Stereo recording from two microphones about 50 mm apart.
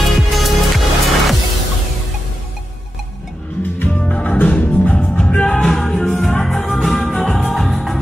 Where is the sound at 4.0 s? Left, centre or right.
Left.